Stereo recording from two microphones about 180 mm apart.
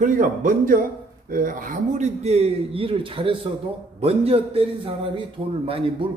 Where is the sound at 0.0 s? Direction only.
45° right (ahead or behind); by 5.2 s 30° right (ahead or behind).